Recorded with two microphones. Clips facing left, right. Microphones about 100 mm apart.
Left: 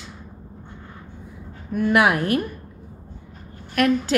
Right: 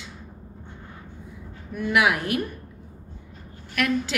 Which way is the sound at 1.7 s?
45° left (ahead or behind).